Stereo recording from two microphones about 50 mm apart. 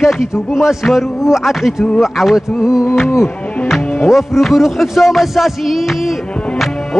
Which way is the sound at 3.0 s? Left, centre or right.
Left.